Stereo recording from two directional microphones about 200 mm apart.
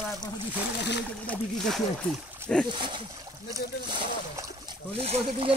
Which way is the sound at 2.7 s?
25° right (ahead or behind).